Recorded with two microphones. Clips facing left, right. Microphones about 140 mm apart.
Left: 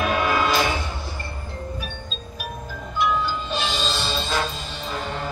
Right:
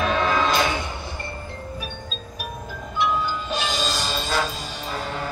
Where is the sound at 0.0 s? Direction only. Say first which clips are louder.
Even; 10° left (ahead or behind).